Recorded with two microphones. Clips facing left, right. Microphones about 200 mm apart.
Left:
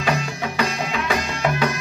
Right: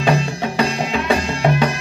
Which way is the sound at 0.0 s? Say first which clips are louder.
Right 5 dB; 30° right (ahead or behind).